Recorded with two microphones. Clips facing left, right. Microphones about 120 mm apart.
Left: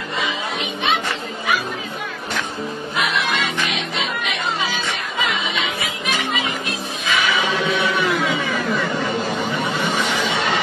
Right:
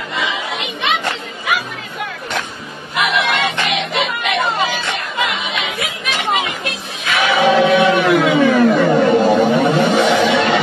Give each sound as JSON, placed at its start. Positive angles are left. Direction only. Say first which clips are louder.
{"t": 0.2, "sound": "music", "louder": "right 2 dB", "side_deg": -80}
{"t": 3.0, "sound": "music", "louder": "right 5 dB", "side_deg": -65}
{"t": 7.1, "sound": "chant", "louder": "right 7 dB", "side_deg": -65}
{"t": 10.0, "sound": "music", "louder": "right 8 dB", "side_deg": -90}